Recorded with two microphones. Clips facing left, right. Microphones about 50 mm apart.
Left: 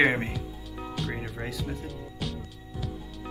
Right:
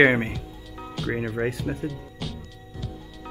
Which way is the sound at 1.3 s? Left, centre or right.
Right.